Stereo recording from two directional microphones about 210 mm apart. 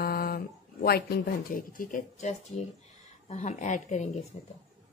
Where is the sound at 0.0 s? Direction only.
45° left (ahead or behind).